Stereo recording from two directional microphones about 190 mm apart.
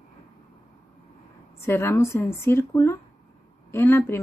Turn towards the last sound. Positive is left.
turn(degrees=10)  # may be behind; listen again after turning